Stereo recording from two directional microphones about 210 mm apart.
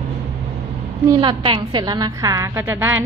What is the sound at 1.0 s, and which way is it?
A woman's voice, 25° right (ahead or behind).